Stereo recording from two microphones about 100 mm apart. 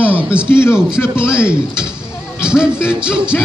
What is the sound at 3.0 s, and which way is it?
Speech, 10° right (ahead or behind).